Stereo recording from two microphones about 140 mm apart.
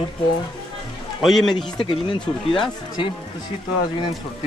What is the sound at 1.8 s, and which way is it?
Speech, 35° left (ahead or behind).